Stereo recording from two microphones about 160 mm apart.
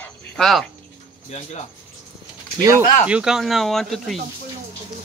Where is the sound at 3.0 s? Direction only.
5° right (ahead or behind).